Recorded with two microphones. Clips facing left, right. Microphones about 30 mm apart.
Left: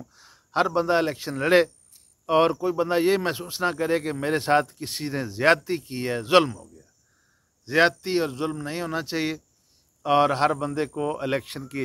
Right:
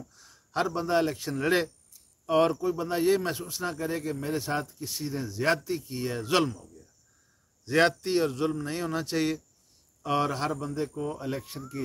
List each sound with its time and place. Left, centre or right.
0.0 s a man's voice: left
5.6 s a man's voice: left
7.6 s speech: left
8.3 s a man's voice: centre
10.0 s speech: left